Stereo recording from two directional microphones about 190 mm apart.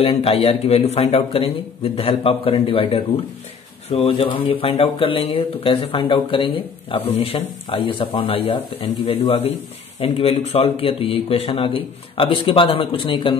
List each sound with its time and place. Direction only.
0.0 s speech: 30° left (ahead or behind)